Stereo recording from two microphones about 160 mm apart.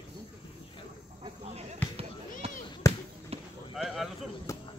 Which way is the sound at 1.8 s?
10° left (ahead or behind).